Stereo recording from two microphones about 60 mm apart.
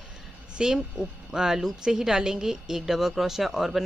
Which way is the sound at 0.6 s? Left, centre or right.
Centre.